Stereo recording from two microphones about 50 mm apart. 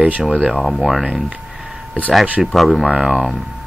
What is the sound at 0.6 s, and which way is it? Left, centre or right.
Speech, centre.